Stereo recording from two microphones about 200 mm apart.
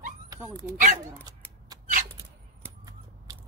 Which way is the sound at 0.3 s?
15° right (ahead or behind).